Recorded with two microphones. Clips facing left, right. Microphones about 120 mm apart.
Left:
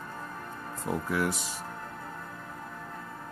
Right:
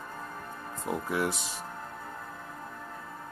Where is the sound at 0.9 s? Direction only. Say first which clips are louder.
Left 1 dB; 25° right (ahead or behind).